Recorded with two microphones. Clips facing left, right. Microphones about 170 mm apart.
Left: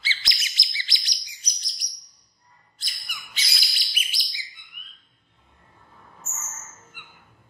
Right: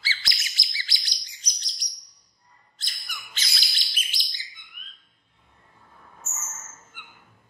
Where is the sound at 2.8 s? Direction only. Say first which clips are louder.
Right 1 dB; 10° left (ahead or behind).